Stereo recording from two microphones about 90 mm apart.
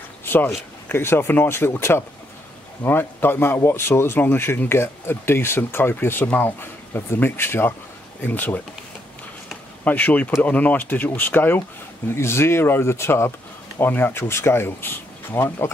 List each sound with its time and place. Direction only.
0.2 s a sound: 20° left (ahead or behind)
0.8 s a man's voice: 25° left (ahead or behind)
9.8 s a man's voice: 20° left (ahead or behind)